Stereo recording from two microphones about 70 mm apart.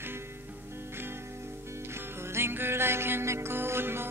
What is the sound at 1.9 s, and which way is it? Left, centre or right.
Music, right.